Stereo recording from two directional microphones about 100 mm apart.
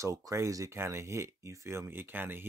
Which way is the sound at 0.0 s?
30° right (ahead or behind).